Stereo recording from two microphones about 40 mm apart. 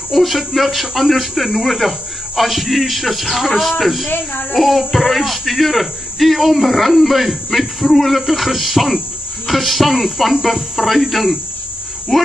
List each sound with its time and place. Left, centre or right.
0.1 s speech: centre
4.1 s speech: left
4.6 s speech: centre